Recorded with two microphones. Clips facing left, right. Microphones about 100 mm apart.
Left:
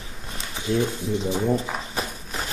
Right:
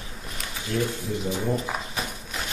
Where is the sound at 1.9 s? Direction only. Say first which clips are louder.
Left 2 dB; 35° left (ahead or behind).